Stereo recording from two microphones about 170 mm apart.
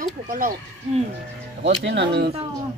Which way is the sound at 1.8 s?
85° right.